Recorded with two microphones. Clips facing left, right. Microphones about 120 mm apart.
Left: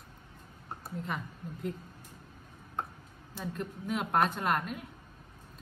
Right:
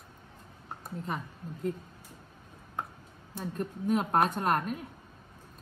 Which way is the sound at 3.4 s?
45° right (ahead or behind).